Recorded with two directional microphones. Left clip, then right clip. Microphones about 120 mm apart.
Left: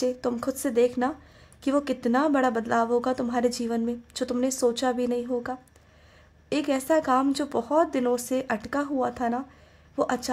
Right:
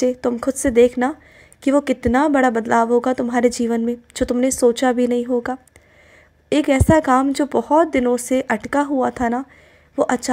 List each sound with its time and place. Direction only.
0.0 s a woman's voice: 25° right (ahead or behind)